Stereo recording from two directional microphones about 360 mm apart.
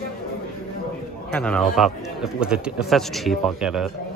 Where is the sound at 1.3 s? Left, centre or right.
Centre.